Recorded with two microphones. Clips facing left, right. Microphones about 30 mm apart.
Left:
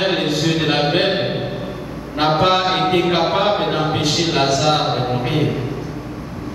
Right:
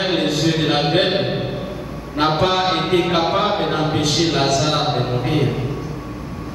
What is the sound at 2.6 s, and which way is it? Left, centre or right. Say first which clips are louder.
A man's voice: left 1 dB; centre.